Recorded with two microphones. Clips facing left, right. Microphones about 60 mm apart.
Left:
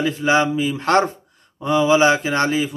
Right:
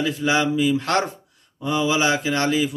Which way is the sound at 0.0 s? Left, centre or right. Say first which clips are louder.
Left 3 dB; left.